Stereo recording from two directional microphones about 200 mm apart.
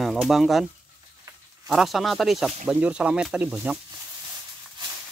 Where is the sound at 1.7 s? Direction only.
Centre (ahead or behind).